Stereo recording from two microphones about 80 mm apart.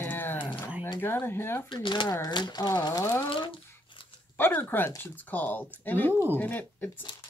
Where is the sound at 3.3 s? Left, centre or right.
Left.